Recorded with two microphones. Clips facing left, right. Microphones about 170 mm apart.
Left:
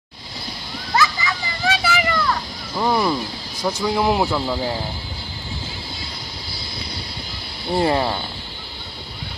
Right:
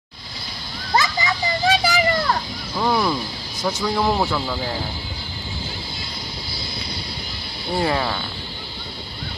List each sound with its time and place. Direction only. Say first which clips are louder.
0.9 s a sound: even; 30° right (ahead or behind)
2.7 s speech: left 1 dB; 5° left (ahead or behind)
7.8 s speech: left 3 dB; 25° left (ahead or behind)